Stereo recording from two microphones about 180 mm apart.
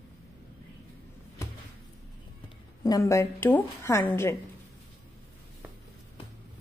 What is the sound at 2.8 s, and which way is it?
A woman's voice, 20° left (ahead or behind).